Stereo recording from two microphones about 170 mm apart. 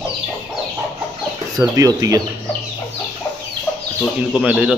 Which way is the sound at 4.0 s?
Centre (ahead or behind).